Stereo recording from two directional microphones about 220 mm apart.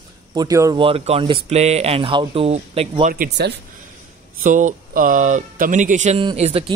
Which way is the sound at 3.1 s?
50° right (ahead or behind).